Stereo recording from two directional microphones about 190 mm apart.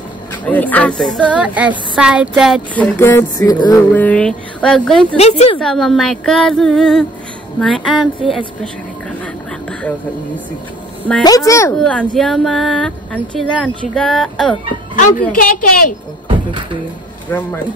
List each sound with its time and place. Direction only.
0.3 s speech: 10° left (ahead or behind)
1.2 s music: 5° right (ahead or behind)
2.7 s a sound: 10° left (ahead or behind)
3.9 s speech: 10° left (ahead or behind)
5.1 s speech: 35° left (ahead or behind)
5.6 s speech: centre (ahead or behind)
9.2 s a sound: 5° left (ahead or behind)
11.7 s speech: 5° left (ahead or behind)
15.3 s a woman's voice: 50° left (ahead or behind)
17.3 s a sound: 10° left (ahead or behind)